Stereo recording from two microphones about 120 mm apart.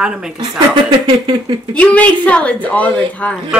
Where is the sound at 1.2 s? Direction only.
40° right (ahead or behind).